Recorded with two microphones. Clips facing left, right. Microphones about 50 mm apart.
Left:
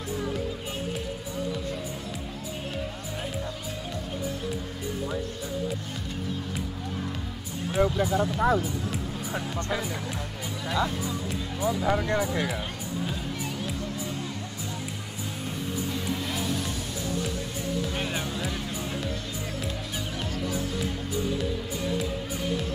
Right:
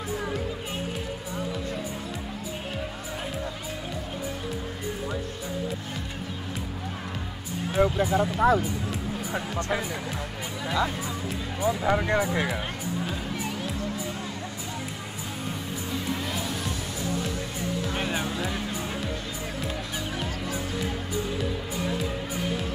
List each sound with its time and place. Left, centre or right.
7.7 s speech: centre
8.5 s music: centre
9.7 s speech: centre
12.5 s music: centre
17.8 s music: centre